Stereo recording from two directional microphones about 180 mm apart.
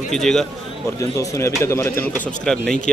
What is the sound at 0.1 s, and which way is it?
Speech, 5° left (ahead or behind).